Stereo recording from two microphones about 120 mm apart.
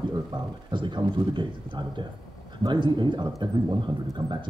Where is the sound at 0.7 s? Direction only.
40° right (ahead or behind).